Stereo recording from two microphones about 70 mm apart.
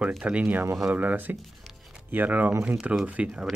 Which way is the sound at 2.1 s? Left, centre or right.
Right.